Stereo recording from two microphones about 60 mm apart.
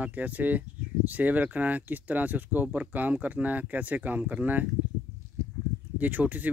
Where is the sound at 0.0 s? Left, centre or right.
Right.